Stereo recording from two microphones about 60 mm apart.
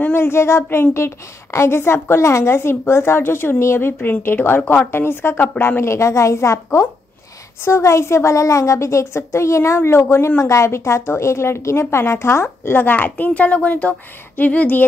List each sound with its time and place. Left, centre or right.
0.1 s a woman's voice: left
12.7 s a woman's voice: left